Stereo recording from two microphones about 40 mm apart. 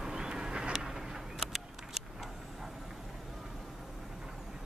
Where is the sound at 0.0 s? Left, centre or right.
Centre.